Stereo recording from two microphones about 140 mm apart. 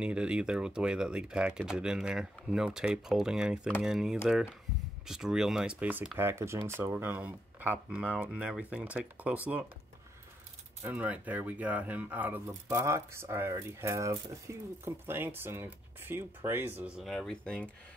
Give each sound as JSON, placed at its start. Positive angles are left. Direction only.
{"t": 0.0, "sound": "speech", "side_deg": -5}
{"t": 10.8, "sound": "speech", "side_deg": -10}